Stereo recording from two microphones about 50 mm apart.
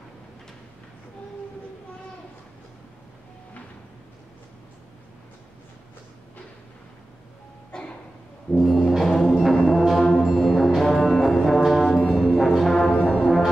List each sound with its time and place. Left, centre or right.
7.7 s music: centre
8.5 s music: centre
10.4 s brass instrument: centre
13.0 s brass instrument: left